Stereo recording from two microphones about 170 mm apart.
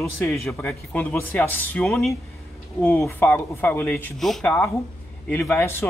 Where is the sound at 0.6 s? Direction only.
10° left (ahead or behind).